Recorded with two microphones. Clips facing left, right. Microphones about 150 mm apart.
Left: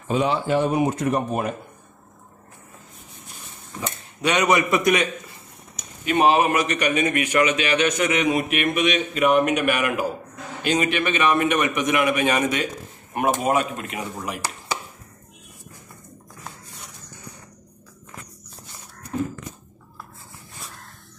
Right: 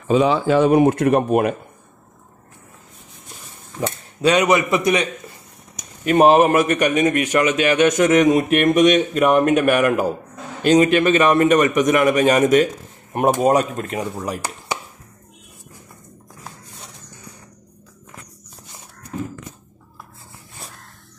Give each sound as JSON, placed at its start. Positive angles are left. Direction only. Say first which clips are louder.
{"t": 0.5, "sound": "speech", "louder": "right 7 dB", "side_deg": -80}
{"t": 4.4, "sound": "a man's voice", "louder": "right 3 dB", "side_deg": -20}
{"t": 6.0, "sound": "speech", "louder": "right 5 dB", "side_deg": -45}